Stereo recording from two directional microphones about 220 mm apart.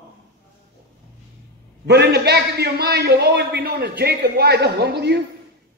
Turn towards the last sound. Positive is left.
turn(degrees=-50)  # may be behind; listen again after turning